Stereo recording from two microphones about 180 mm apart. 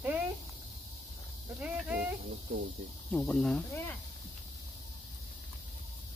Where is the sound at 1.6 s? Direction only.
5° right (ahead or behind).